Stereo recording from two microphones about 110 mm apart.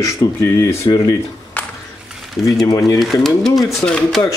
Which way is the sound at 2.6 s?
35° left (ahead or behind).